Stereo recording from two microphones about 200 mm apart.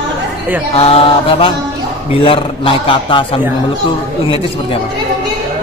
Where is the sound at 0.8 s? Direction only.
30° left (ahead or behind).